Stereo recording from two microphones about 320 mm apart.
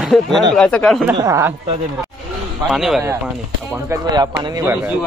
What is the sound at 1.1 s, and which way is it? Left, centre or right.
Speech, centre.